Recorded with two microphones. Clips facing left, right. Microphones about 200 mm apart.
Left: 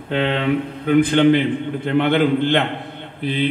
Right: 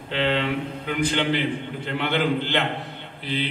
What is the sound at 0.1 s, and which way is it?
A man's voice, 55° left (ahead or behind).